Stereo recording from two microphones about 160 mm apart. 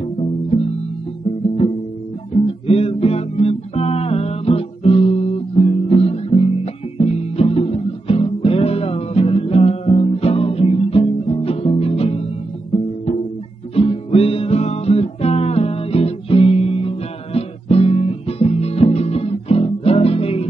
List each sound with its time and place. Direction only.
0.0 s music: 40° left (ahead or behind)
2.3 s music: 35° left (ahead or behind)
13.7 s music: 35° left (ahead or behind)